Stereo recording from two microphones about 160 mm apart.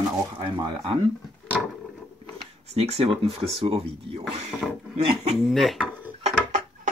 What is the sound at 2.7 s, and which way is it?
Speech, 40° right (ahead or behind).